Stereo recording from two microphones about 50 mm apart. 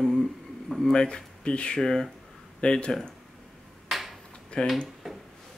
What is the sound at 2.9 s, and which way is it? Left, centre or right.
Speech, centre.